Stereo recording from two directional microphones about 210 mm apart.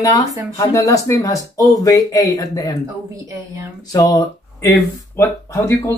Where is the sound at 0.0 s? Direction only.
15° left (ahead or behind).